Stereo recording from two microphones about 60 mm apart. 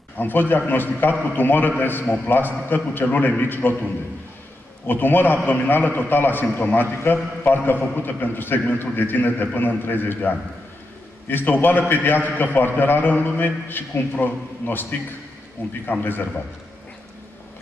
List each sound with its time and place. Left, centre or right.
0.2 s a man's voice: left
4.8 s a man's voice: left